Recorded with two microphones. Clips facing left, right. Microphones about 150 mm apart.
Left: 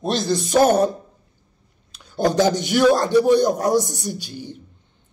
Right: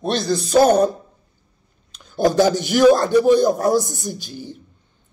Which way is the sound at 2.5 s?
40° right (ahead or behind).